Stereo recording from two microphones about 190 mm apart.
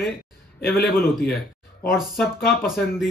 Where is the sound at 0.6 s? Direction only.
50° left (ahead or behind).